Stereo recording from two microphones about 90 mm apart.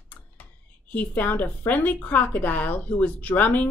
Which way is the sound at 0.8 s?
20° left (ahead or behind).